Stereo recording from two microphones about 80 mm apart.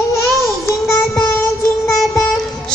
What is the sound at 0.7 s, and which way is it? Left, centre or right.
Music, left.